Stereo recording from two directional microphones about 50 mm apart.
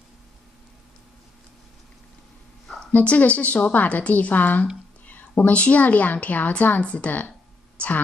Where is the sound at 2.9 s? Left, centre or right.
Left.